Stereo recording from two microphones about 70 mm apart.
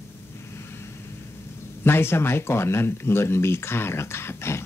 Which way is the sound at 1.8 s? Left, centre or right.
Left.